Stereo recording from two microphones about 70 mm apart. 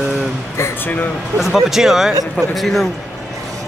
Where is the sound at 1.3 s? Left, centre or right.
Centre.